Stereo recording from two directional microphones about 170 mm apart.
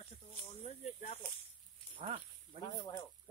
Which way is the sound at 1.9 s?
35° right (ahead or behind).